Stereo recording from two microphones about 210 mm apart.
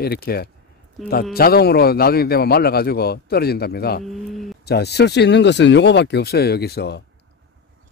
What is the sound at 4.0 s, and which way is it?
Speech, centre (ahead or behind).